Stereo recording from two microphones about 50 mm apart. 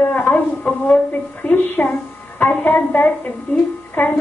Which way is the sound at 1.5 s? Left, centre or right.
Left.